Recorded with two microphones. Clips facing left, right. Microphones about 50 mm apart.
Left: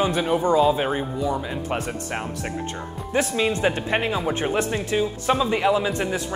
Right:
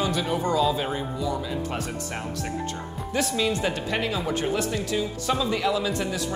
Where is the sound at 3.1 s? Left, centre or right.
Left.